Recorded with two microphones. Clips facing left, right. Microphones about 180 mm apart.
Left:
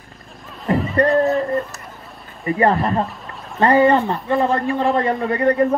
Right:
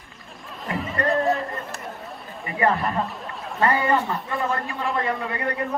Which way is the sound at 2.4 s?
35° left (ahead or behind).